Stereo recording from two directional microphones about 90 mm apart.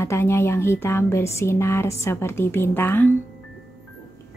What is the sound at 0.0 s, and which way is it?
Speech, 30° left (ahead or behind).